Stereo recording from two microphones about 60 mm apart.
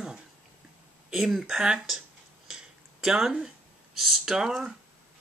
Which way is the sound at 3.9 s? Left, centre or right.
Centre.